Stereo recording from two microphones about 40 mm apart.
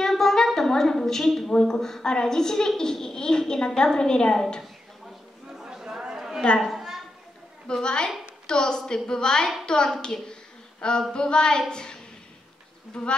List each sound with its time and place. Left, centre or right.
0.0 s a sound: centre
0.6 s a woman's voice: centre
1.5 s a woman's voice: centre
5.5 s chatter: centre
7.8 s a woman's voice: left
10.8 s a sound: left
11.1 s a woman's voice: left